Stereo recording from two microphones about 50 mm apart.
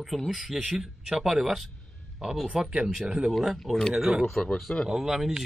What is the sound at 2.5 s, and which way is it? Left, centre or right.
Speech, centre.